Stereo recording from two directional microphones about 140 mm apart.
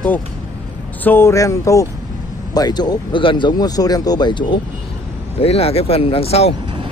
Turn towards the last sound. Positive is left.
turn(degrees=45)  # may be behind; listen again after turning